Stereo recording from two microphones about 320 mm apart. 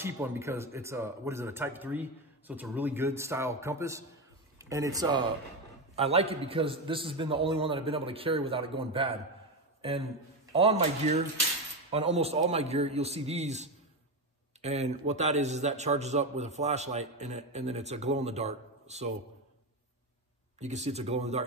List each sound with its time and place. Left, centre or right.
0.0 s a man's voice: centre
9.8 s a sound: centre
10.5 s a man's voice: centre
20.5 s a man's voice: right